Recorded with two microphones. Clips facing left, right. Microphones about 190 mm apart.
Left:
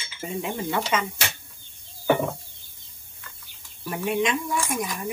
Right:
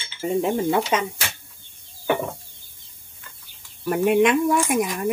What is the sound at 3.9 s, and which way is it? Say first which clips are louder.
Speech: right 7 dB; 60° right (ahead or behind).